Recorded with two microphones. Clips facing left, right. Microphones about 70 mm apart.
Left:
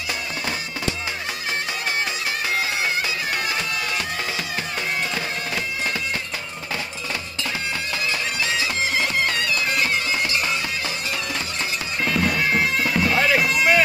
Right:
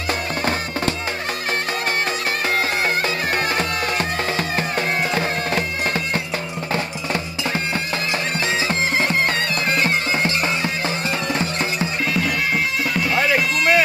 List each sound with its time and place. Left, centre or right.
3.3 s bagpipes: right
8.5 s music: right
12.1 s bagpipes: centre